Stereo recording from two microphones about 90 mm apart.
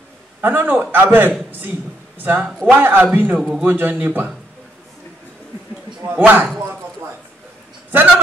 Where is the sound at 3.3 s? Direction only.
Centre (ahead or behind).